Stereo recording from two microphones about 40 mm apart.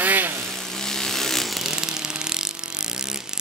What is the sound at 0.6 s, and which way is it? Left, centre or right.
Vehicle, centre.